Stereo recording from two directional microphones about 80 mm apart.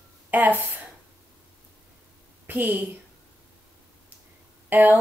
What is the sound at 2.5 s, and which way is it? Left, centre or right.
Speech, right.